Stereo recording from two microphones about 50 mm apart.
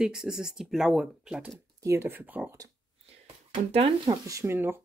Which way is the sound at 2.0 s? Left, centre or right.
Right.